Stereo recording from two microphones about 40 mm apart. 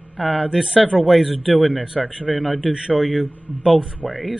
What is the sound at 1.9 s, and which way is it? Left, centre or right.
Speech, right.